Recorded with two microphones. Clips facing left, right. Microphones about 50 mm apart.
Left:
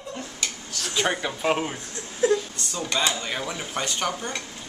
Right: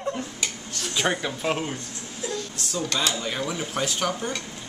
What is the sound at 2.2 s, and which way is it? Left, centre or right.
Speech, left.